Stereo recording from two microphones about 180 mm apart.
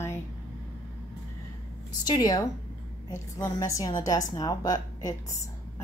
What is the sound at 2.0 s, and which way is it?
A woman's voice, 20° left (ahead or behind).